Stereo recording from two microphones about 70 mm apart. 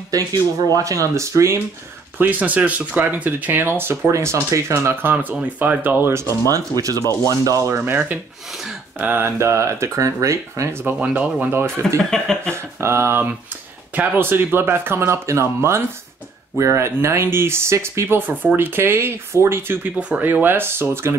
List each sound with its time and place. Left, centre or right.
0.1 s speech: right
2.1 s speech: right
5.3 s speech: centre; by 6.3 s right
6.4 s speech: right
7.7 s speech: right
9.2 s speech: right
11.0 s speech: right
12.1 s a sound: centre
12.8 s speech: right
20.0 s speech: right